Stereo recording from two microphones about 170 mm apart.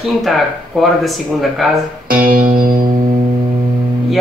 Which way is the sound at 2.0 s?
55° right (ahead or behind).